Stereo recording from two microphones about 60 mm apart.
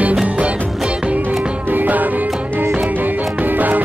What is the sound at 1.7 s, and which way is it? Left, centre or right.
Music, right.